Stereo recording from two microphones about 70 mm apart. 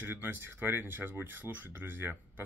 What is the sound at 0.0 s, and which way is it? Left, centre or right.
Speech, right.